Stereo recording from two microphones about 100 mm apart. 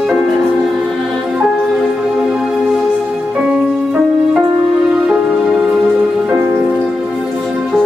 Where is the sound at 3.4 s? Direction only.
10° right (ahead or behind).